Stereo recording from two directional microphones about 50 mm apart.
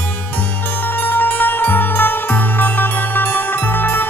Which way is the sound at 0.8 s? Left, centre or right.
Left.